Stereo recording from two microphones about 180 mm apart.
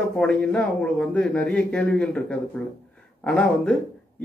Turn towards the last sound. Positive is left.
turn(degrees=5)  # may be behind; listen again after turning